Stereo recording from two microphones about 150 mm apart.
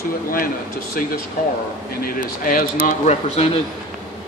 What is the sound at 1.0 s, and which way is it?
A man's voice, 70° left (ahead or behind).